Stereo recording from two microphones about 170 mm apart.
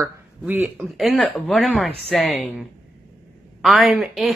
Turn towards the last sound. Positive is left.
turn(degrees=0)  # may be behind; listen again after turning